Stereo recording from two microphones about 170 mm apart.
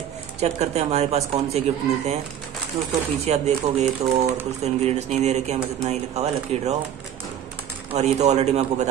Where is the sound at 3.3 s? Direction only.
40° right (ahead or behind).